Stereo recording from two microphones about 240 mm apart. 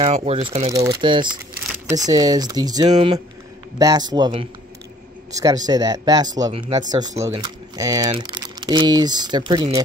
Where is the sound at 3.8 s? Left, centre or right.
Centre.